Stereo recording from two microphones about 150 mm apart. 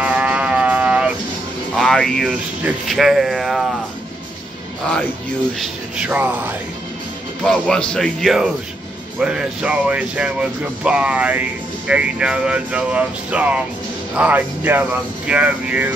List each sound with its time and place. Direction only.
0.0 s music: 10° right (ahead or behind)
1.8 s speech: 5° left (ahead or behind)
5.6 s speech: 10° right (ahead or behind)
7.4 s speech: 5° left (ahead or behind)